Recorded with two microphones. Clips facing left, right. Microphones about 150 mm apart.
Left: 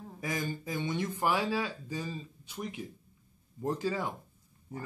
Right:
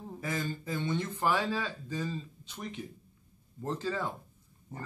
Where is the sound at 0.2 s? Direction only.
15° left (ahead or behind).